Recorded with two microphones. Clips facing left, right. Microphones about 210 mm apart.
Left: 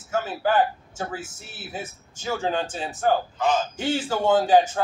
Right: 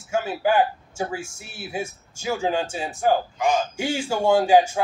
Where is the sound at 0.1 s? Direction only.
10° right (ahead or behind).